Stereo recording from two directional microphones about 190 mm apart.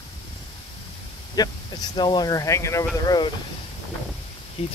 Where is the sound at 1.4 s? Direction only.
20° left (ahead or behind).